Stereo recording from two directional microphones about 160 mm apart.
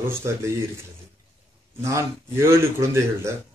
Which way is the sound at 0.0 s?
15° right (ahead or behind).